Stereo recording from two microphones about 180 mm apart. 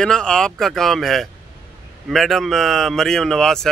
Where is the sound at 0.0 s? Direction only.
5° left (ahead or behind).